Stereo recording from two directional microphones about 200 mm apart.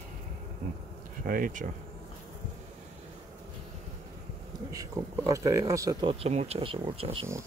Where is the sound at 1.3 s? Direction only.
45° right (ahead or behind).